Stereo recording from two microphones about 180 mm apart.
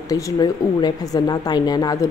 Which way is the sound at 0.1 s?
20° left (ahead or behind).